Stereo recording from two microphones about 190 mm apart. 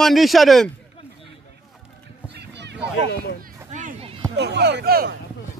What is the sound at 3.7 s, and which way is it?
Music, 40° right (ahead or behind).